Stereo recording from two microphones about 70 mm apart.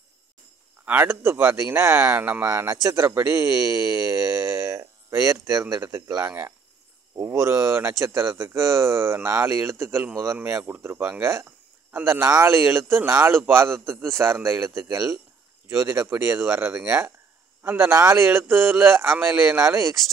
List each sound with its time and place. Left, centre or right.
0.8 s a man's voice: right
2.8 s speech: right
3.2 s speech: right
8.1 s a man's voice: right
10.4 s a man's voice: right
11.4 s a sound: right
12.3 s a man's voice: right